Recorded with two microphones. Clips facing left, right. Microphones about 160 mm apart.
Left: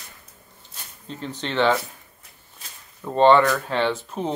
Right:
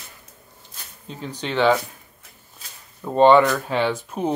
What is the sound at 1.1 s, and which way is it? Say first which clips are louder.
Speech: right 1 dB; 5° right (ahead or behind).